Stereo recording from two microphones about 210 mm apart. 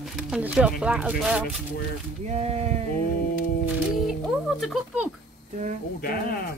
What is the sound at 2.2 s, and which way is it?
Speech, 30° right (ahead or behind).